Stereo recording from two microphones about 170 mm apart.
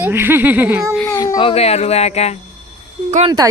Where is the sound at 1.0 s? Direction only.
20° left (ahead or behind).